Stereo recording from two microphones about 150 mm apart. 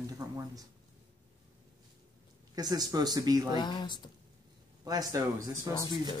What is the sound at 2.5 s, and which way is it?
Speech, 25° right (ahead or behind).